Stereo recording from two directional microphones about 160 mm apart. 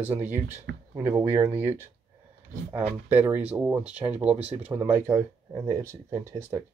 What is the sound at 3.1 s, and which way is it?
Speech, 10° right (ahead or behind).